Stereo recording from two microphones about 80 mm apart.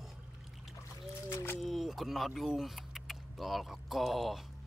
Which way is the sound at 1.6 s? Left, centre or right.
Centre.